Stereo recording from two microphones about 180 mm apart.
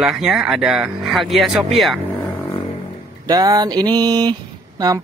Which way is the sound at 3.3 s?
20° right (ahead or behind).